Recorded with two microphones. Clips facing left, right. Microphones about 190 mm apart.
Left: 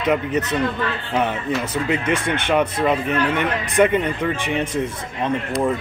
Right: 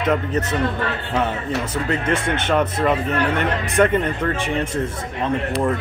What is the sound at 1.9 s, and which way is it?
Speech, 15° left (ahead or behind).